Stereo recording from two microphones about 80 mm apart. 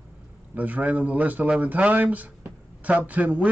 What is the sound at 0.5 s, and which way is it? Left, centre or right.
Speech, right.